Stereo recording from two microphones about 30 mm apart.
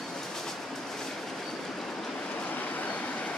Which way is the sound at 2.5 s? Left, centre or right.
Left.